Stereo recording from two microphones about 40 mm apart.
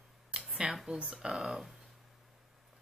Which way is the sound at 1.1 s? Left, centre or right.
Centre.